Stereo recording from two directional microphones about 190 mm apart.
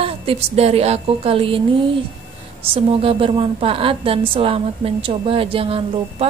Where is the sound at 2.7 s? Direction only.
30° right (ahead or behind).